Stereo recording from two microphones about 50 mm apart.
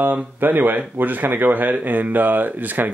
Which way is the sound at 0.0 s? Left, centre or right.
Right.